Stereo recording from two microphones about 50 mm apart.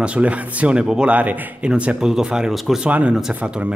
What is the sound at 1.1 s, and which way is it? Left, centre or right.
Speech, right.